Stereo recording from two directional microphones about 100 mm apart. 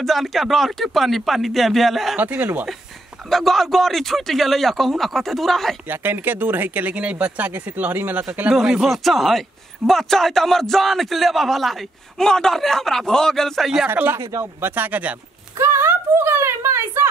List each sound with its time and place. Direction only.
0.0 s speech: centre (ahead or behind)
2.1 s speech: 20° right (ahead or behind)
3.3 s speech: centre (ahead or behind)
5.9 s speech: 20° right (ahead or behind)
8.5 s speech: 5° right (ahead or behind)
13.8 s speech: 20° right (ahead or behind)
15.6 s a woman's voice: 25° right (ahead or behind)